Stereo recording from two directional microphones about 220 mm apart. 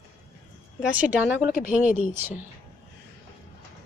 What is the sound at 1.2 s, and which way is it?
Speech, 5° right (ahead or behind).